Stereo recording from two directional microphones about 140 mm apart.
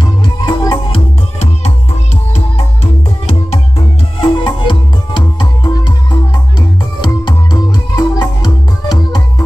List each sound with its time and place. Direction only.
0.0 s music: 35° left (ahead or behind)
2.3 s music: 50° left (ahead or behind)
3.7 s music: 35° left (ahead or behind)